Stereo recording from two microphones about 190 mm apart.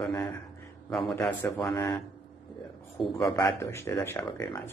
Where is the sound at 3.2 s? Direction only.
15° left (ahead or behind).